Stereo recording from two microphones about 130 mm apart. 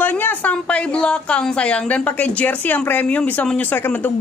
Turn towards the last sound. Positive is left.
turn(degrees=15)  # may be behind; listen again after turning